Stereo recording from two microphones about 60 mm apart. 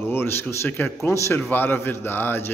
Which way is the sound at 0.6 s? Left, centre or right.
Left.